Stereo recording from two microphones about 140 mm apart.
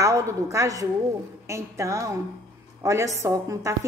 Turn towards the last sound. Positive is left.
turn(degrees=-25)  # may be behind; listen again after turning